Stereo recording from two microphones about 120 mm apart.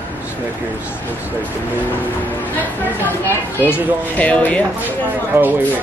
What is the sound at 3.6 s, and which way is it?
Speech, 15° right (ahead or behind).